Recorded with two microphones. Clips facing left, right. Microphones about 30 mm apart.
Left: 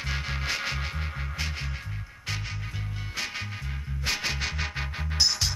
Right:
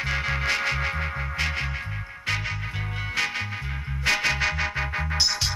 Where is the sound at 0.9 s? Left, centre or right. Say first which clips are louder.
Right 7 dB; right.